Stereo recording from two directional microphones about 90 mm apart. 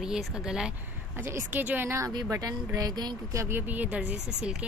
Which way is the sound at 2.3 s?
45° right (ahead or behind).